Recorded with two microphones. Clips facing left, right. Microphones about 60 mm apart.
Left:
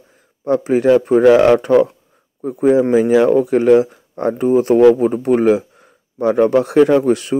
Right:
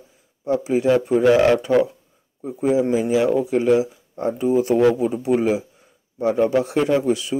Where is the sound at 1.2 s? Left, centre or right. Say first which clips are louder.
Left 5 dB; left.